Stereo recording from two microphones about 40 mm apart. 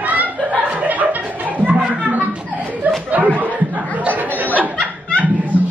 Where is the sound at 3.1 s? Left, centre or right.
Right.